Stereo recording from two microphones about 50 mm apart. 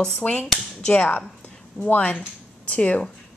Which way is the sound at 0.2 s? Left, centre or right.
Left.